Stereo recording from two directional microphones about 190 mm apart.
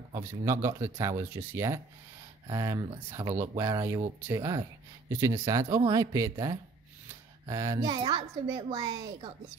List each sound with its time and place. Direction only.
0.1 s a woman's voice: 15° right (ahead or behind)